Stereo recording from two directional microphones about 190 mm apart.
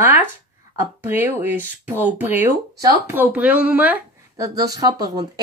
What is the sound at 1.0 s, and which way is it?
Speech, 10° right (ahead or behind).